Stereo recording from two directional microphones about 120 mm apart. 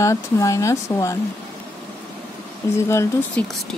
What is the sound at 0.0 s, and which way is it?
Speech, 25° left (ahead or behind).